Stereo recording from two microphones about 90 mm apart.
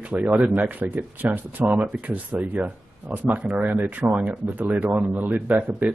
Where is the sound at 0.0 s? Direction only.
15° right (ahead or behind).